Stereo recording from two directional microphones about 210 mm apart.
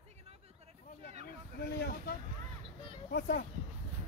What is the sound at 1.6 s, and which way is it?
Speech, 45° left (ahead or behind).